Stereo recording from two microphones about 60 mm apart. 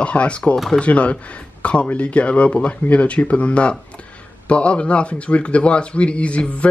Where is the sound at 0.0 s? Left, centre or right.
Left.